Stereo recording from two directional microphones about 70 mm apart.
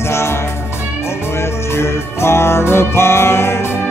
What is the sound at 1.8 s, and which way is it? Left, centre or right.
Music, left.